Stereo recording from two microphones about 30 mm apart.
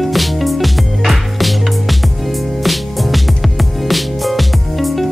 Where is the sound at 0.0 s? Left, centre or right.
Centre.